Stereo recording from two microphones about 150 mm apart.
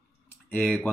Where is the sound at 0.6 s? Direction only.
10° left (ahead or behind).